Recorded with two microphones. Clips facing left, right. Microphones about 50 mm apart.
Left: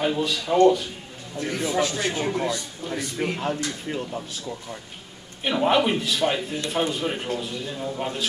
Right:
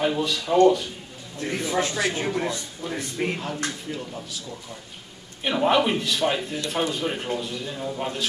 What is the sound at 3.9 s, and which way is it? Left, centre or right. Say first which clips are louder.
Speech: left 3 dB; left.